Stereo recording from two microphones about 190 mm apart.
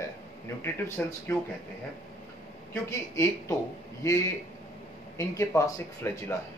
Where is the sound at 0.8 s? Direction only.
15° left (ahead or behind).